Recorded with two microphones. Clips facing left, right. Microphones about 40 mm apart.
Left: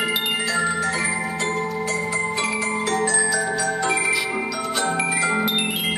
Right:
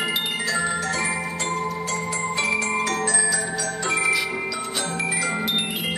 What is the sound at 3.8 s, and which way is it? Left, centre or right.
Music, centre.